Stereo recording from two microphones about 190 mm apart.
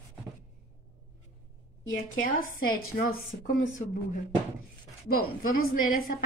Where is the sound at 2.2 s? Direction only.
45° left (ahead or behind).